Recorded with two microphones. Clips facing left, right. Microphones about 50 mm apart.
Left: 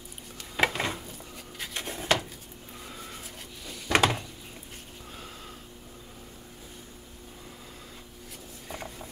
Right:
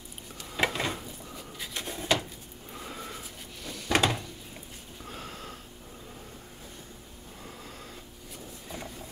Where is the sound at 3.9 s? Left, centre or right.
Centre.